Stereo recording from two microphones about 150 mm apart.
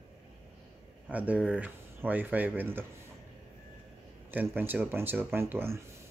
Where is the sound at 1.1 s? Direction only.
10° right (ahead or behind).